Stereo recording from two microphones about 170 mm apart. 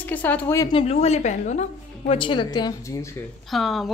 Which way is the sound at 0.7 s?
40° left (ahead or behind).